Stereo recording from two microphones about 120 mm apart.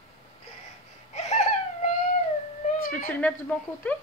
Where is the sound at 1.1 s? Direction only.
65° left (ahead or behind).